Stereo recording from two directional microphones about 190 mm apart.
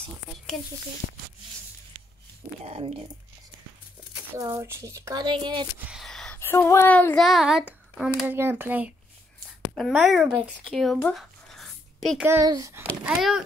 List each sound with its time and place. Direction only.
2.6 s speech: 35° right (ahead or behind)
4.4 s speech: 15° right (ahead or behind)
5.9 s speech: centre (ahead or behind)
7.2 s speech: centre (ahead or behind)
12.3 s speech: 15° right (ahead or behind)